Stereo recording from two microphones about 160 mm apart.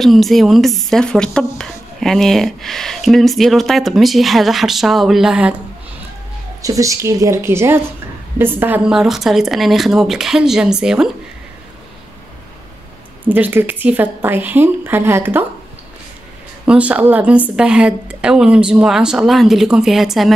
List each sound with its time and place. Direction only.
0.0 s a woman's voice: centre (ahead or behind)
6.6 s a woman's voice: 20° right (ahead or behind); by 11.1 s 5° right (ahead or behind)
13.3 s a woman's voice: 10° right (ahead or behind)
16.6 s a woman's voice: 10° right (ahead or behind)